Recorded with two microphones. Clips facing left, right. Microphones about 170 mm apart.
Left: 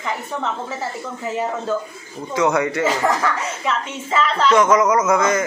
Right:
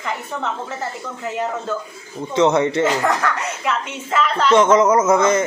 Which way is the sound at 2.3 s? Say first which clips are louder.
Right 3 dB; 25° right (ahead or behind).